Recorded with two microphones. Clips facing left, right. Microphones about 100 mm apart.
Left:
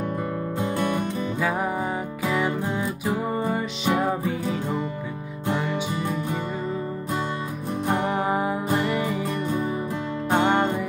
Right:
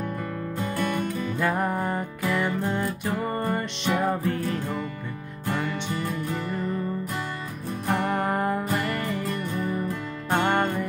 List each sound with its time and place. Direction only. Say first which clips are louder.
0.6 s music: left 2 dB; 20° left (ahead or behind)
1.4 s music: right 1 dB; 5° left (ahead or behind)
7.9 s music: left 1 dB; 10° left (ahead or behind)
8.6 s music: left 3 dB; 15° left (ahead or behind)